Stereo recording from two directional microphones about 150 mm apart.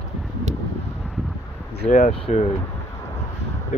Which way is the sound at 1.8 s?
55° left (ahead or behind).